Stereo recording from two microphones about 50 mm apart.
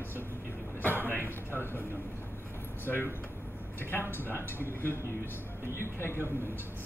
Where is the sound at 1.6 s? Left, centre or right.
Left.